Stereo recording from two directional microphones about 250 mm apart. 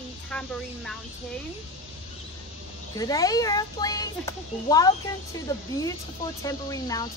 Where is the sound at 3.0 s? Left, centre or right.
Centre.